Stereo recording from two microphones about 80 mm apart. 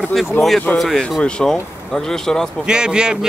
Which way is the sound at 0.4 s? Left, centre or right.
Left.